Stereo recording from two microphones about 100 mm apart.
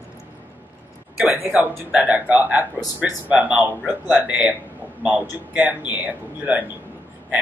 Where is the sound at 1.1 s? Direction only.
15° right (ahead or behind).